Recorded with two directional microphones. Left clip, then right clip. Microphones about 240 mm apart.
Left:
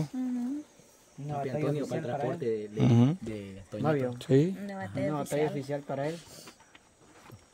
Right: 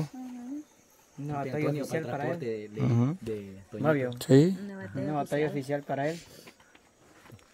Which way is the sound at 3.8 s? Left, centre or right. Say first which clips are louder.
Right 3 dB; right.